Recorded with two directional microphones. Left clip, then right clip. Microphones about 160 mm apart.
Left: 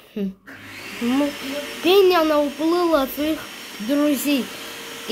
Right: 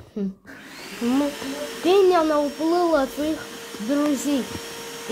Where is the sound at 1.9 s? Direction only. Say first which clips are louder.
Left 2 dB; 5° left (ahead or behind).